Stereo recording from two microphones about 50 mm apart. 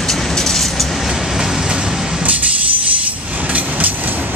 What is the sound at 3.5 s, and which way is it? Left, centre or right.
Train, right.